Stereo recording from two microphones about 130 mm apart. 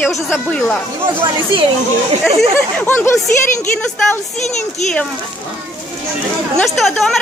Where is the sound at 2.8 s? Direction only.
20° left (ahead or behind).